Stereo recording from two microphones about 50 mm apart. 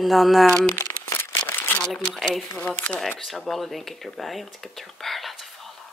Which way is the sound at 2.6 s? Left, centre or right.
Left.